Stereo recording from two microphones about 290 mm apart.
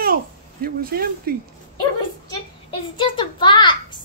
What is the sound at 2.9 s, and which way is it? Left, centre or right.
A child's voice, centre.